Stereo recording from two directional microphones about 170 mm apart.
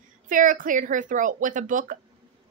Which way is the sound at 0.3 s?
50° right (ahead or behind).